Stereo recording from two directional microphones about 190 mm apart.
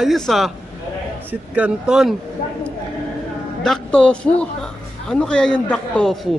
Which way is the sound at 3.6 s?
5° left (ahead or behind).